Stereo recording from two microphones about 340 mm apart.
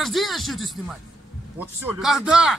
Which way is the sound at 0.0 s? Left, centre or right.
Centre.